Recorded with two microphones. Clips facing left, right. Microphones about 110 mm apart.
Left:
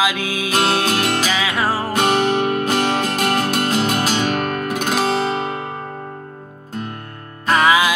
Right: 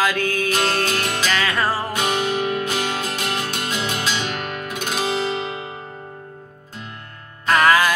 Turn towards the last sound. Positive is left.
turn(degrees=5)  # may be behind; listen again after turning